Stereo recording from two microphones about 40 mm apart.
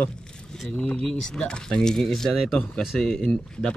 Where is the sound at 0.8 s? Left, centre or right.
Centre.